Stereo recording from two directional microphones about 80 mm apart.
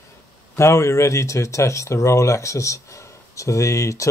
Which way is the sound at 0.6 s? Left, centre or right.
Left.